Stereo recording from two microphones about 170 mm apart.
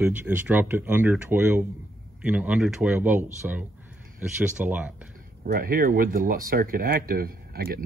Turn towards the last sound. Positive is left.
turn(degrees=-60)  # may be behind; listen again after turning